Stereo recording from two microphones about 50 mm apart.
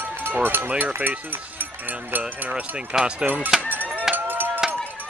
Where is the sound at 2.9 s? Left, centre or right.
Centre.